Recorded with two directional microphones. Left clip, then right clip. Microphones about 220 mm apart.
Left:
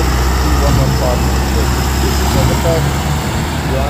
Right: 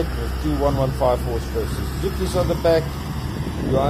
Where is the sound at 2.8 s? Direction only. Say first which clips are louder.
Left 13 dB; 25° left (ahead or behind).